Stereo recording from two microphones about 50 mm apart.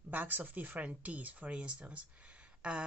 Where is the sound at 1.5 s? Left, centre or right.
Right.